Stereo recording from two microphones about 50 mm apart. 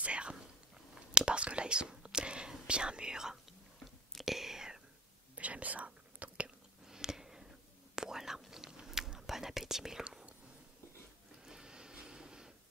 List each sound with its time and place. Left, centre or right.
0.0 s whispering: right
2.6 s speech: centre
4.1 s whispering: centre
5.3 s whispering: right
6.9 s a sound: centre
7.9 s whispering: centre
11.4 s printer: centre